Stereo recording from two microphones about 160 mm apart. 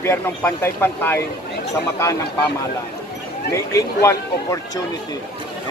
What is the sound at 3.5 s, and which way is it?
Speech, 20° left (ahead or behind).